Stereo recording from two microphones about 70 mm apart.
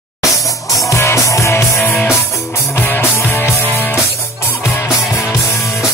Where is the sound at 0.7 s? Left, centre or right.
Left.